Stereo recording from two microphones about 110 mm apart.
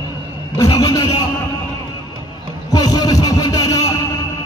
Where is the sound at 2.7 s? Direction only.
35° left (ahead or behind).